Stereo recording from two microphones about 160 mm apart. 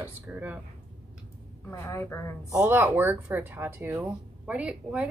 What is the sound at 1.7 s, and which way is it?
Speech, 15° left (ahead or behind).